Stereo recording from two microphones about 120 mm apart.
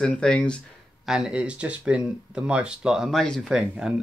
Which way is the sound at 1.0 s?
5° right (ahead or behind).